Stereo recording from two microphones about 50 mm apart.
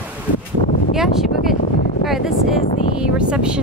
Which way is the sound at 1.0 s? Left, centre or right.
Centre.